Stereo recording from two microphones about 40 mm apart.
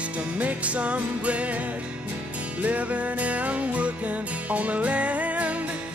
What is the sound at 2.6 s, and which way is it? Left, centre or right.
Music, right.